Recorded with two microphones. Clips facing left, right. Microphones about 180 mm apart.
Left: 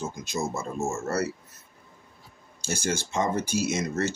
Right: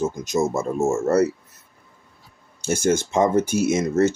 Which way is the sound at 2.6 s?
50° right (ahead or behind).